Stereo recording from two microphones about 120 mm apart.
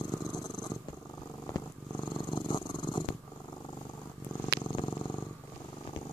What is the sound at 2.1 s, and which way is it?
Purr, 40° left (ahead or behind).